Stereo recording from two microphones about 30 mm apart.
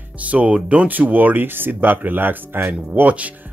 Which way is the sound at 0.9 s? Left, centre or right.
Right.